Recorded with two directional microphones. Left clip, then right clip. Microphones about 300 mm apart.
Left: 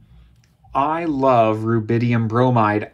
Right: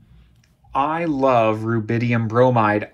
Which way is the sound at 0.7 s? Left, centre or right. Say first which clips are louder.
Left 1 dB; centre.